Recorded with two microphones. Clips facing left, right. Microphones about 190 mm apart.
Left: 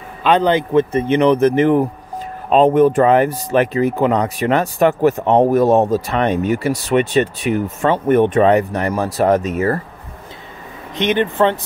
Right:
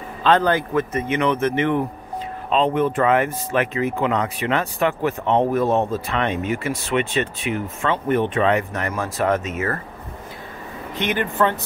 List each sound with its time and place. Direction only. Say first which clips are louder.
0.2 s speech: left 3 dB; 15° left (ahead or behind); by 9.8 s 35° left (ahead or behind)
11.0 s speech: left 5 dB; 20° left (ahead or behind)